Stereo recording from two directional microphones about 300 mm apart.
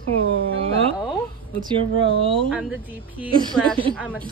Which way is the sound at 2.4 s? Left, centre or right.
Centre.